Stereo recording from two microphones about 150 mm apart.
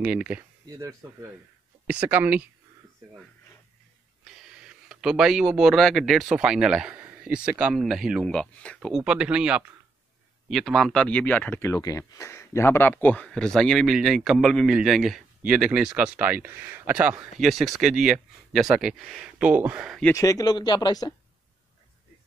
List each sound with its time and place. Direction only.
0.0 s speech: 10° right (ahead or behind)
0.7 s speech: 20° right (ahead or behind)
1.9 s speech: 10° right (ahead or behind)
4.2 s speech: 5° right (ahead or behind)
20.2 s speech: 25° left (ahead or behind)